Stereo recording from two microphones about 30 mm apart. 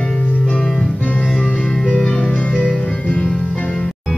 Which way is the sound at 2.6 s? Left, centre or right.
Left.